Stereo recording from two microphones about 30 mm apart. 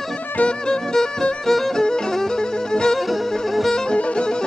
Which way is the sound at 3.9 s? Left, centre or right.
Left.